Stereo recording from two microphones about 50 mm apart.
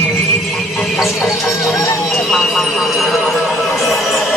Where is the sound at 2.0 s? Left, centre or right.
Centre.